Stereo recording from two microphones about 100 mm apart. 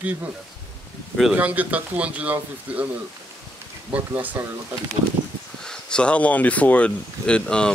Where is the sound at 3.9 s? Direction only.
15° right (ahead or behind).